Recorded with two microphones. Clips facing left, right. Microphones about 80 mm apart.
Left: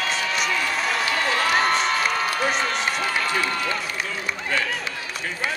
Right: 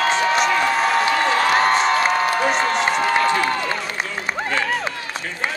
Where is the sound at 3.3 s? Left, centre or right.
Right.